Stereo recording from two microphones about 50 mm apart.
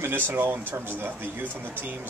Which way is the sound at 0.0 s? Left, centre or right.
Right.